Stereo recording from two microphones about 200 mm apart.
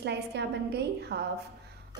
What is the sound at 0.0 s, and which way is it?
A woman's voice, 60° right (ahead or behind).